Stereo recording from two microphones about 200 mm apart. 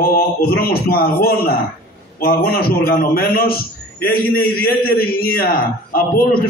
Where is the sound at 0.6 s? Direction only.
50° left (ahead or behind).